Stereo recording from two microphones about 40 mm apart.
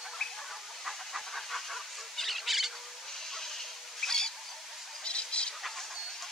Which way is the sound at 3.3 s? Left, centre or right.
Centre.